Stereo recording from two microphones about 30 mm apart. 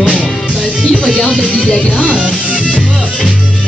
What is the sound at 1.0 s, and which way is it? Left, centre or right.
Speech, left.